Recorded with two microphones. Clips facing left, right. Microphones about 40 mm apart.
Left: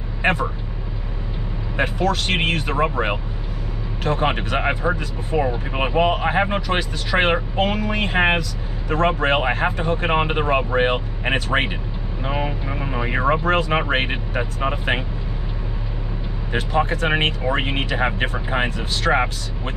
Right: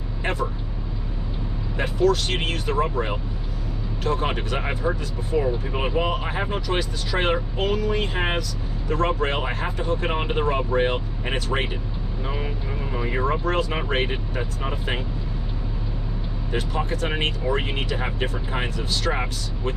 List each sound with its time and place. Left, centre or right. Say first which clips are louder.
0.2 s vehicle: left 6 dB; left
1.8 s speech: even; left
16.5 s speech: left 6 dB; left